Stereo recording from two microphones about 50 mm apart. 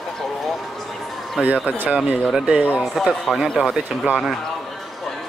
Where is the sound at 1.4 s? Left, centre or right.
Centre.